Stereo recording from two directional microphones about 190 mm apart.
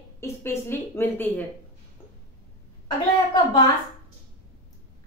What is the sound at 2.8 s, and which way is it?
Speech, 25° left (ahead or behind).